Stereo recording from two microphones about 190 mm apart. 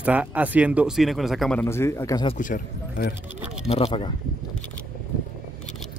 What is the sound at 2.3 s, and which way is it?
Speech, 45° left (ahead or behind).